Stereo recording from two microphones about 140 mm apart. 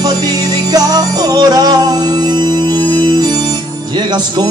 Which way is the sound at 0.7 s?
30° right (ahead or behind).